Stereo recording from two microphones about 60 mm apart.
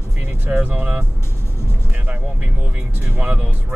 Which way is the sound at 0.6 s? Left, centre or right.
Right.